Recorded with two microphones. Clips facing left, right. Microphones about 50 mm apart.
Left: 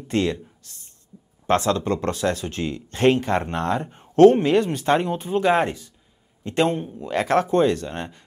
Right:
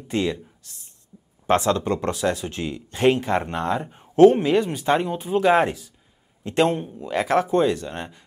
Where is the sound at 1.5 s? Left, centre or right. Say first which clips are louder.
Even; right.